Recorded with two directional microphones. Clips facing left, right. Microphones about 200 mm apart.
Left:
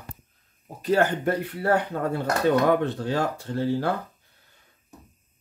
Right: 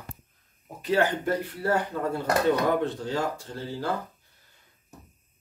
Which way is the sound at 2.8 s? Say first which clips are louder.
Left 2 dB; 60° left (ahead or behind).